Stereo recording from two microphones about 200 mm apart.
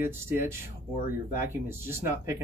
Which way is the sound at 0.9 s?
45° left (ahead or behind).